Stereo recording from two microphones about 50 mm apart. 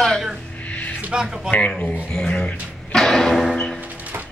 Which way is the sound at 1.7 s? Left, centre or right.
Centre.